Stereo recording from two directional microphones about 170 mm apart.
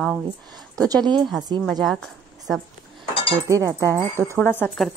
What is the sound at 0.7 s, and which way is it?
Speech, 20° right (ahead or behind).